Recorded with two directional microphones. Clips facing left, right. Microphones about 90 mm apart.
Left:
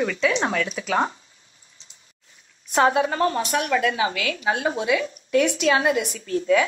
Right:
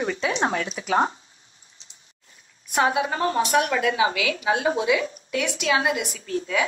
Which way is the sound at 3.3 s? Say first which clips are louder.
Right 1 dB; 20° right (ahead or behind).